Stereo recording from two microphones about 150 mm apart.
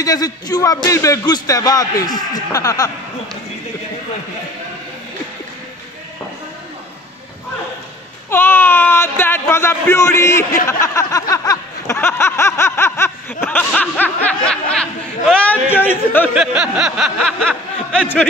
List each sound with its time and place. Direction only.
0.0 s a man's voice: 25° left (ahead or behind)
8.3 s speech: 15° left (ahead or behind)
10.7 s a sound: 20° left (ahead or behind)
15.7 s speech: 15° left (ahead or behind)
16.3 s speech: 5° right (ahead or behind)